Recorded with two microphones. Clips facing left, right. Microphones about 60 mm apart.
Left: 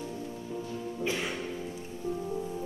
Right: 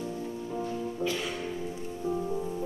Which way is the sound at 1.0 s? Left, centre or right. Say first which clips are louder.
Left 1 dB; left.